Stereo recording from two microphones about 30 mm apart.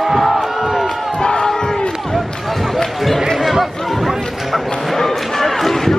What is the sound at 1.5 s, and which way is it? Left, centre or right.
Crowd, left.